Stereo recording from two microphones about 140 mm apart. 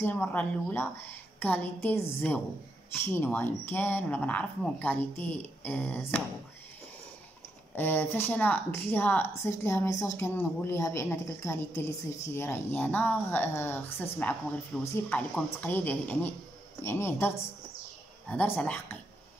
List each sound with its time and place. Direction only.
0.0 s speech: 15° left (ahead or behind)
7.7 s speech: 15° left (ahead or behind)
18.3 s speech: 10° left (ahead or behind)